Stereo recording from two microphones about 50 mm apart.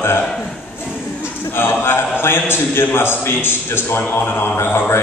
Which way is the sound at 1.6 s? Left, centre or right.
Left.